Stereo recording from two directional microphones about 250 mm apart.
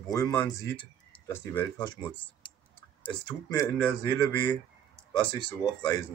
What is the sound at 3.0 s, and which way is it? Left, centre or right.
Speech, centre.